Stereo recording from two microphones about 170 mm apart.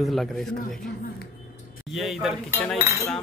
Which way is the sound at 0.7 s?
55° left (ahead or behind).